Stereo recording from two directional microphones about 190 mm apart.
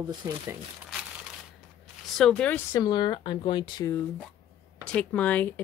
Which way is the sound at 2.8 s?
25° left (ahead or behind).